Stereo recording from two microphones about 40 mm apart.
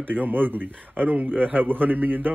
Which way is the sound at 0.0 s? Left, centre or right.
Right.